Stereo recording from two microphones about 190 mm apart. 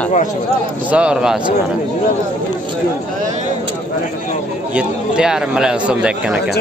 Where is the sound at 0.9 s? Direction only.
5° right (ahead or behind).